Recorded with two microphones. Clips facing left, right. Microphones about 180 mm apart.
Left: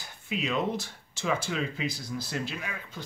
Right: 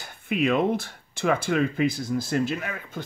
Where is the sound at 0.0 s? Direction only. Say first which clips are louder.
Right 8 dB; 55° right (ahead or behind).